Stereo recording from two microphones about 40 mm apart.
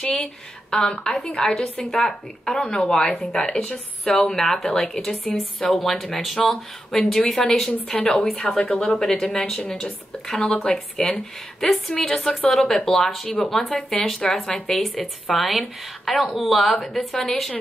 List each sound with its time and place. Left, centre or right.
0.0 s a woman's voice: left
1.5 s a woman's voice: centre
2.6 s a woman's voice: left
4.0 s a woman's voice: centre
8.5 s a woman's voice: left
15.2 s a woman's voice: centre